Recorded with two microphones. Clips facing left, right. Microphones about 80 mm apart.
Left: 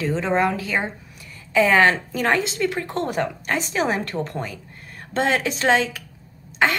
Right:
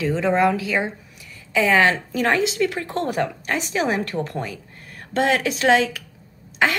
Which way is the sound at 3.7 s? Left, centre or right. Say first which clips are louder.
Right 2 dB; left.